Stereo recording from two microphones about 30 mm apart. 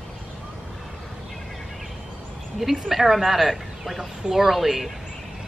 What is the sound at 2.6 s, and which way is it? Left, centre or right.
Speech, centre.